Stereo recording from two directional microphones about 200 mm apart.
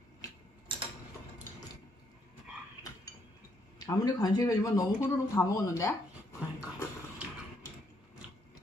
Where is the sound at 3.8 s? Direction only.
20° left (ahead or behind).